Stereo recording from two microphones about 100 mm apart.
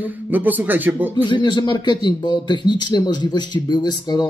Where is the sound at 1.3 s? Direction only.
50° left (ahead or behind).